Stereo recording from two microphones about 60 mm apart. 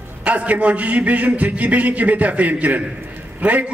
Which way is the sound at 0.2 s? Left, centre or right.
Right.